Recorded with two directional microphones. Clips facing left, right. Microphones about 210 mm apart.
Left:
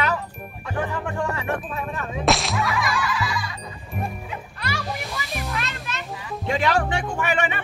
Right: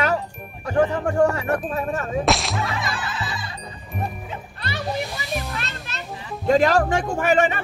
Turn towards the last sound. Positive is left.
turn(degrees=-45)  # may be behind; listen again after turning